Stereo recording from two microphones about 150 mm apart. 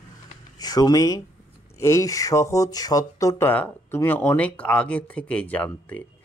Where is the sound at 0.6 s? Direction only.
25° left (ahead or behind).